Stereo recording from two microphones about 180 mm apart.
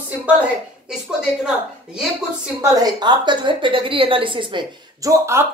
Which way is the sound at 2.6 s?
20° right (ahead or behind).